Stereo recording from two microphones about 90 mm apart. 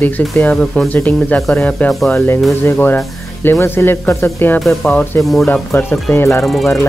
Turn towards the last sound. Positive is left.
turn(degrees=0)  # may be behind; listen again after turning